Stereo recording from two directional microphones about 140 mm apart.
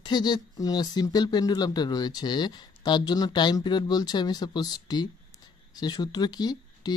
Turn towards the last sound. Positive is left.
turn(degrees=30)  # may be behind; listen again after turning